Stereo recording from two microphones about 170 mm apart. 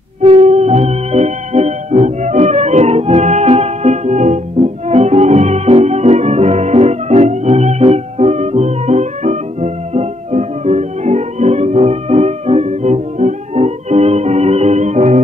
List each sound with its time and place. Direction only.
0.2 s music: 35° right (ahead or behind)